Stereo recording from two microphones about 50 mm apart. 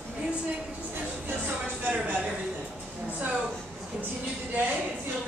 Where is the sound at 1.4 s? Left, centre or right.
Right.